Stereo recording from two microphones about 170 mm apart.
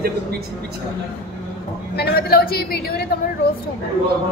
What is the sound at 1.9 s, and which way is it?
A woman's voice, 65° left (ahead or behind).